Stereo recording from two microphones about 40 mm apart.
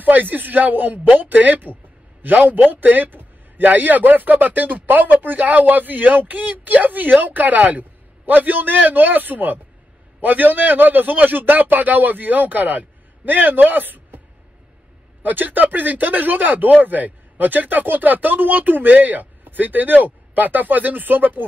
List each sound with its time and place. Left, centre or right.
0.0 s a man's voice: right
3.6 s speech: right
15.2 s speech: right